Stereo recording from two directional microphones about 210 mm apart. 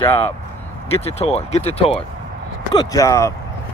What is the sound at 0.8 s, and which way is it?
Speech, 30° left (ahead or behind).